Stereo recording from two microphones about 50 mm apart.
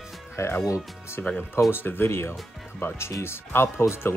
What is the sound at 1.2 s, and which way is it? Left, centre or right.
Speech, left.